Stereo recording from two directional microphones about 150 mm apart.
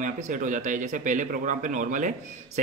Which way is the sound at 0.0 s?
55° right (ahead or behind).